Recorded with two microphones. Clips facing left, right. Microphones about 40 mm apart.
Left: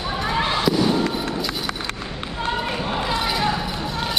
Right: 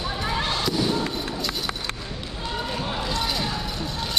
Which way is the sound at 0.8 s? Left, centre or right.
Centre.